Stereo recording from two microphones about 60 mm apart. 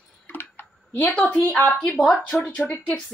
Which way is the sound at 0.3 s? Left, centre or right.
Left.